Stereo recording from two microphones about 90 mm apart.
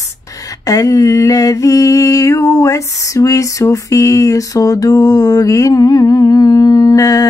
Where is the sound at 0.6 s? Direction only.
40° left (ahead or behind).